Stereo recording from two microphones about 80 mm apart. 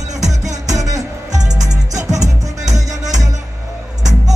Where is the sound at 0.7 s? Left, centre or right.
Right.